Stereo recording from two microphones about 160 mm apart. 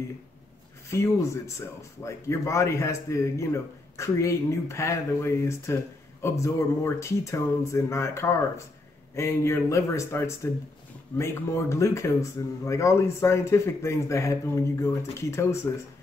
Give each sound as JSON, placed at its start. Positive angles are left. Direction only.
{"t": 0.8, "sound": "speech", "side_deg": 20}